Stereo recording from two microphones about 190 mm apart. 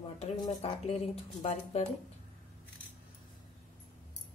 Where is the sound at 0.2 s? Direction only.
35° left (ahead or behind).